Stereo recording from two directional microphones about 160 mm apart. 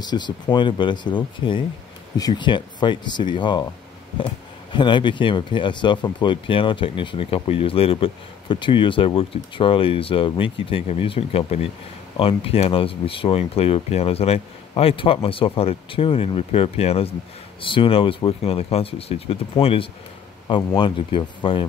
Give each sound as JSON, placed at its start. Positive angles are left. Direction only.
{"t": 0.0, "sound": "speech", "side_deg": 25}
{"t": 4.7, "sound": "speech", "side_deg": 30}